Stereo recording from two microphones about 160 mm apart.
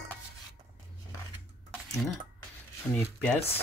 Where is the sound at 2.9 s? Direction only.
10° left (ahead or behind).